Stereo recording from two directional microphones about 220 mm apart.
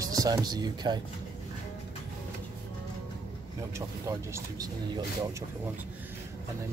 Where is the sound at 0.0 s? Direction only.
15° right (ahead or behind).